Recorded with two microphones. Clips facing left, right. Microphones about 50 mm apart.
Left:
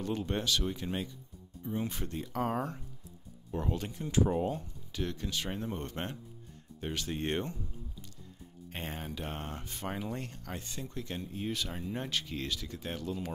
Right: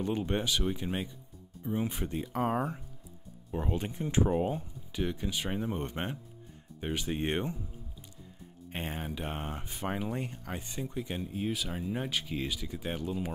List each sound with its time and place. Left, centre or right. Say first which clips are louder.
0.0 s speech: right 2 dB; centre
4.3 s speech: right 2 dB; centre
8.7 s speech: right 3 dB; centre